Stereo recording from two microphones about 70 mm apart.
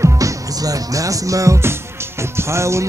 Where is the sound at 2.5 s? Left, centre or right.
Right.